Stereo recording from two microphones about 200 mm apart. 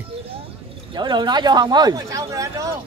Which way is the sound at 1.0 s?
20° right (ahead or behind).